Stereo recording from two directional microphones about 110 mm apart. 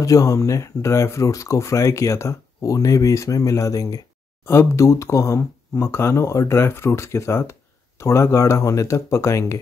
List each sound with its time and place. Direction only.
0.0 s speech: 30° left (ahead or behind)